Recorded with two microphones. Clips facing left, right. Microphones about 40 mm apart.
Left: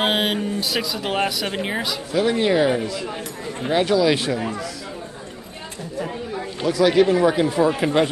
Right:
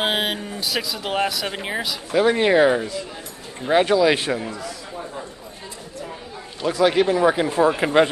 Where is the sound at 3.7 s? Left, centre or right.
Centre.